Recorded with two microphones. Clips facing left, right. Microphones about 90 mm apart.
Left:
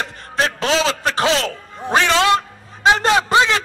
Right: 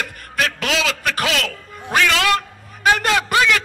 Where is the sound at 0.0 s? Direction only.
30° left (ahead or behind).